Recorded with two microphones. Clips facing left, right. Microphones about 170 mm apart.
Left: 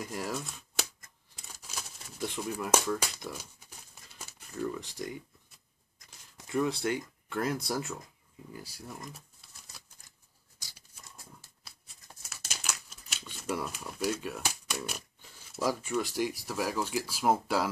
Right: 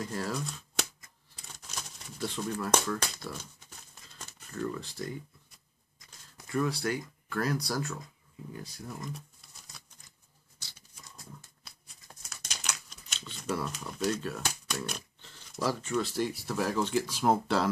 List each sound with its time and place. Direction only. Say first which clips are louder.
0.0 s speech: right 1 dB; 10° left (ahead or behind)
1.3 s typewriter: even; 5° left (ahead or behind)
2.2 s speech: right 1 dB; 15° left (ahead or behind)
8.5 s speech: right 2 dB; 5° left (ahead or behind)
9.7 s patter: even; 5° left (ahead or behind)
11.6 s crumpling: even; 5° left (ahead or behind)